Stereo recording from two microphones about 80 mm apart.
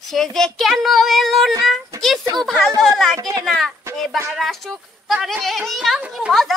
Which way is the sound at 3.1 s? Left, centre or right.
Right.